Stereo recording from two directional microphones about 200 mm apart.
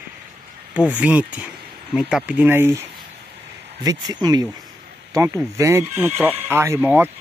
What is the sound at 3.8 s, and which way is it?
Speech, 20° right (ahead or behind).